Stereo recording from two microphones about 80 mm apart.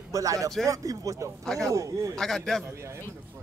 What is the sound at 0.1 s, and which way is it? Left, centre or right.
Speech, right.